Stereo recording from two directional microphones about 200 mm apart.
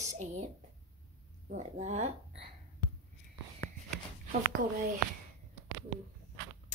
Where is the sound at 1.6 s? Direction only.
35° right (ahead or behind).